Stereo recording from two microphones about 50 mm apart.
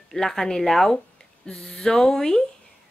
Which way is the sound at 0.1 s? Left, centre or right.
Centre.